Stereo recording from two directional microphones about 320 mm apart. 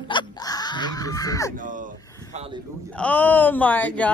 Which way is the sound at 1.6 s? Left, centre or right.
Right.